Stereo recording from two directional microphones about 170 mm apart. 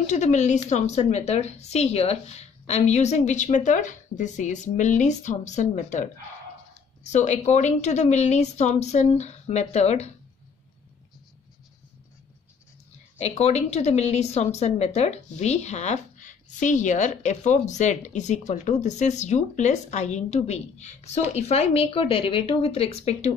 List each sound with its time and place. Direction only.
0.0 s a woman's voice: 45° left (ahead or behind)
13.2 s a woman's voice: 40° left (ahead or behind)